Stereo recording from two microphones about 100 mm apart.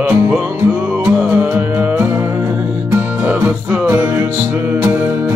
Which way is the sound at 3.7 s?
25° right (ahead or behind).